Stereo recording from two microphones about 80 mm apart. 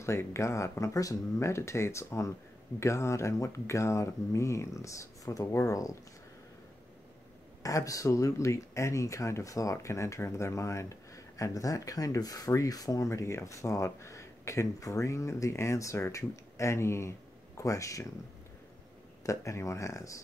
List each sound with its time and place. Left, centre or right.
0.0 s speech: left
7.6 s speech: left
19.2 s speech: left